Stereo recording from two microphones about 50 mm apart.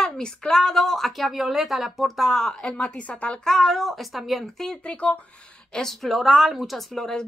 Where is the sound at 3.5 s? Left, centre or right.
Centre.